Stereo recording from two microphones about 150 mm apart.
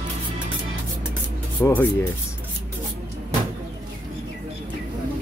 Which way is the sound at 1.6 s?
10° left (ahead or behind).